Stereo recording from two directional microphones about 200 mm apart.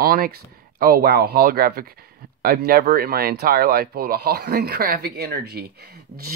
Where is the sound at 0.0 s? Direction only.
50° right (ahead or behind).